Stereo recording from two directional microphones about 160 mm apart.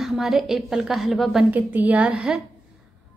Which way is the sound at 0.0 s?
Centre (ahead or behind).